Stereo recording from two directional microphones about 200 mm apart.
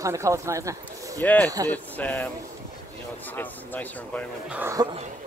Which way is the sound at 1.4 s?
20° right (ahead or behind).